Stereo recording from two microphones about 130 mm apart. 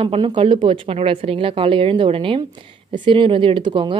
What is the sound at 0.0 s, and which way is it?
A woman's voice, 40° right (ahead or behind).